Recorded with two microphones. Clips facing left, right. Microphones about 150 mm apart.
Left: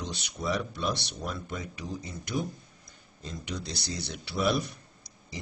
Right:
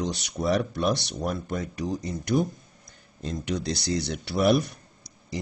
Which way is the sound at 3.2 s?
70° right (ahead or behind).